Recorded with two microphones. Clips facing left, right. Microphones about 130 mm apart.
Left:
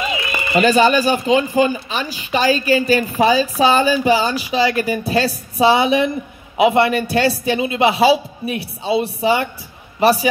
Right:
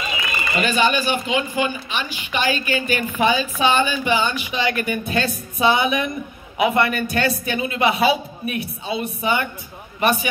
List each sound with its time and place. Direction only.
0.6 s a man's voice: 40° left (ahead or behind)